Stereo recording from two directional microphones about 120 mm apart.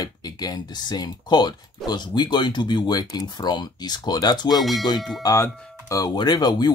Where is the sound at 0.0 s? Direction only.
35° left (ahead or behind).